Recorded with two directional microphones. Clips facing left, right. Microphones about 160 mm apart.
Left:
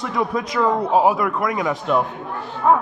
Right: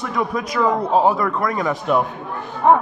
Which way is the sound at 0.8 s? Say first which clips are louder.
Even; 5° left (ahead or behind).